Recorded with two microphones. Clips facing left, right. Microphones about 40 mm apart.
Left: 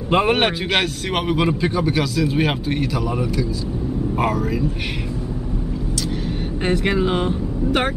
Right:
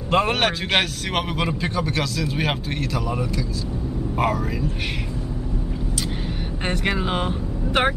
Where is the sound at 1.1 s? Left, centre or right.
Centre.